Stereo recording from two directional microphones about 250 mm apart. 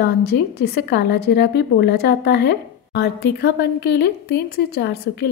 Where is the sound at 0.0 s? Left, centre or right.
Left.